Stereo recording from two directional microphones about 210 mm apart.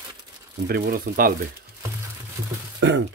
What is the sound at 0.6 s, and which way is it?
Speech, 45° right (ahead or behind).